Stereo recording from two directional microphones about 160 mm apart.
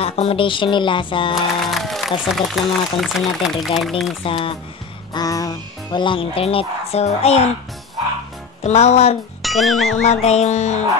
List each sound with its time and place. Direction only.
0.0 s speech: 40° left (ahead or behind)
1.3 s speech: centre (ahead or behind)
4.2 s speech: 35° left (ahead or behind)
5.1 s speech: 20° left (ahead or behind); by 7.4 s 40° left (ahead or behind)
8.6 s music: 45° left (ahead or behind)
9.4 s speech: centre (ahead or behind)
10.0 s music: 45° left (ahead or behind)